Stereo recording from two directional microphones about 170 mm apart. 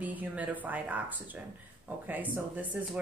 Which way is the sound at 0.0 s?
10° right (ahead or behind).